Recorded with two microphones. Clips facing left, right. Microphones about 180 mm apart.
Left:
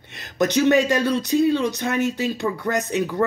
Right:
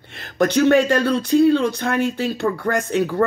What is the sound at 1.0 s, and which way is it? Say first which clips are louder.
Speech: right 3 dB; 15° left (ahead or behind).